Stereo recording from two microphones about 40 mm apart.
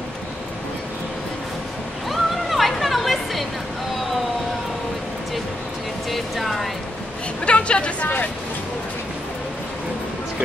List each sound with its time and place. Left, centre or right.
2.0 s a sound: centre
6.0 s vehicle: centre
7.4 s chatter: left